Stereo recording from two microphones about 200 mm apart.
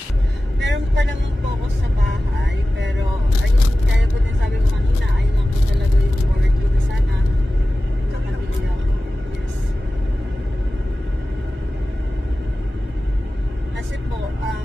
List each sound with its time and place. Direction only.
0.6 s vehicle: 60° right (ahead or behind)